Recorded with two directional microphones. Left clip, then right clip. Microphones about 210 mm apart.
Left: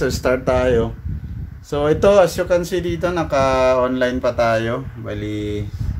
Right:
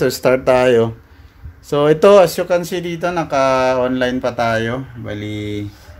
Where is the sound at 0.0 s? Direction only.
15° right (ahead or behind).